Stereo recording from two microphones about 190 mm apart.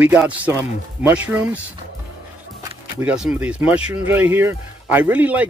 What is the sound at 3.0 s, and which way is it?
Speech, 5° right (ahead or behind).